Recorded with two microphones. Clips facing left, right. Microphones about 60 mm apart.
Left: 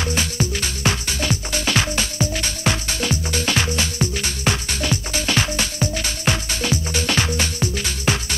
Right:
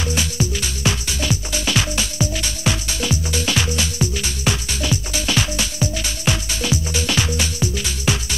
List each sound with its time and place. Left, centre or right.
0.0 s music: left